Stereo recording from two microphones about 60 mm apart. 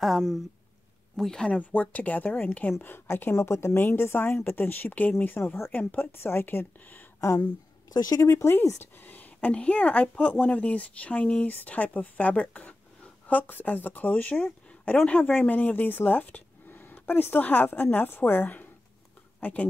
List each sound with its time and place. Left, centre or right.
0.0 s speech: centre
1.6 s a woman's voice: left
7.9 s speech: left
8.3 s speech: left
9.0 s a woman's voice: left